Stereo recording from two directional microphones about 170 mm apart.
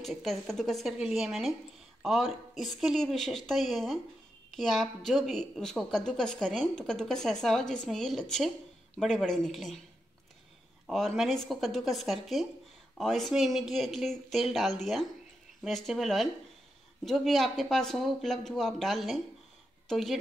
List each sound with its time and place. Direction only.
0.0 s a woman's voice: centre (ahead or behind)
10.9 s a woman's voice: centre (ahead or behind)